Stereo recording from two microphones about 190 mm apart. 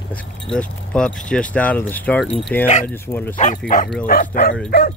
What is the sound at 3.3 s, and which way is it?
Speech, 40° left (ahead or behind).